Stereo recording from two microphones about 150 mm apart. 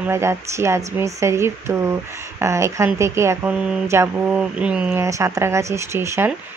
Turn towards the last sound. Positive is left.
turn(degrees=-15)  # may be behind; listen again after turning